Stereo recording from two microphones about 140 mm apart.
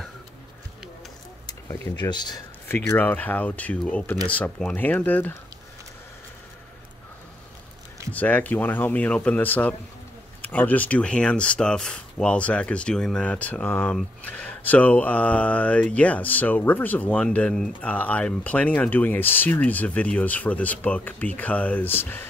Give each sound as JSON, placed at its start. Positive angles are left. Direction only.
{"t": 2.0, "sound": "speech", "side_deg": 30}
{"t": 2.7, "sound": "mantra", "side_deg": 15}
{"t": 8.1, "sound": "mantra", "side_deg": 10}